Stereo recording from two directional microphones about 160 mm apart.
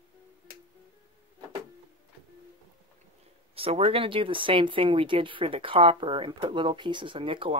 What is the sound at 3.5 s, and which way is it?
Speech, 35° right (ahead or behind).